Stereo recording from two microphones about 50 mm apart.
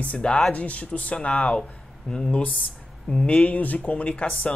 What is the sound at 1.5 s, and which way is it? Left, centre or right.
Speech, centre.